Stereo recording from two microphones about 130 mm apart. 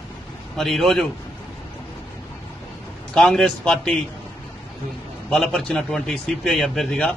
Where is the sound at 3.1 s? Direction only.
5° left (ahead or behind).